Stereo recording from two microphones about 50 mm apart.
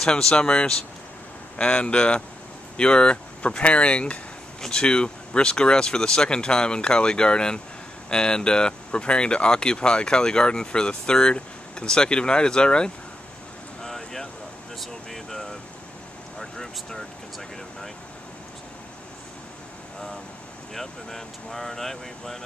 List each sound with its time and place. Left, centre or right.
0.0 s speech: centre
13.8 s a sound: centre
14.8 s air conditioning: centre
16.3 s vehicle: centre
20.7 s speech: centre